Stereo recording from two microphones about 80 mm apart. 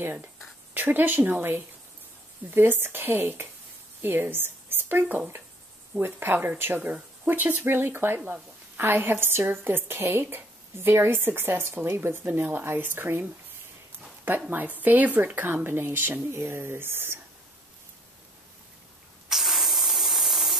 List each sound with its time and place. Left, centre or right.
0.7 s a woman's voice: right
14.5 s a woman's voice: right
19.2 s spray: centre